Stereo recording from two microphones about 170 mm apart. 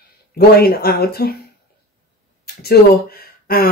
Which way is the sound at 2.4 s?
65° left (ahead or behind).